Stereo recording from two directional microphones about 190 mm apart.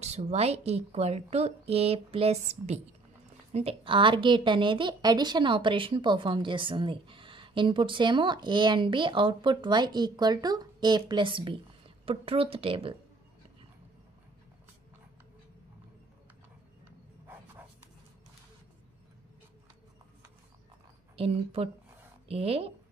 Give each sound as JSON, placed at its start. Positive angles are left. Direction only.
{"t": 0.0, "sound": "a woman's voice", "side_deg": -35}
{"t": 21.2, "sound": "a woman's voice", "side_deg": -30}